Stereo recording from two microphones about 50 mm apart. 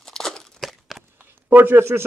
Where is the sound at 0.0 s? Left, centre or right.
Centre.